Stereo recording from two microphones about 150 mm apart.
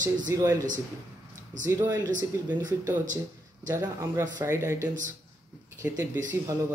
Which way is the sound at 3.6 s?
25° right (ahead or behind).